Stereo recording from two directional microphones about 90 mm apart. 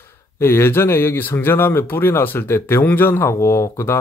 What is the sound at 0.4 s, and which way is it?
Speech, 25° left (ahead or behind).